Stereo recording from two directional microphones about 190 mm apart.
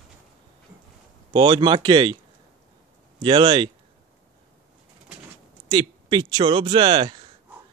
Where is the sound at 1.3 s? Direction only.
25° right (ahead or behind).